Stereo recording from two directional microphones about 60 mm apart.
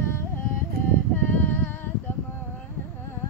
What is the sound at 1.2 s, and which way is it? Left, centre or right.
Female singing, left.